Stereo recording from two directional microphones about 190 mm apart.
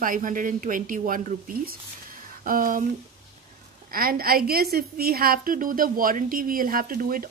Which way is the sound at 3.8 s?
50° right (ahead or behind).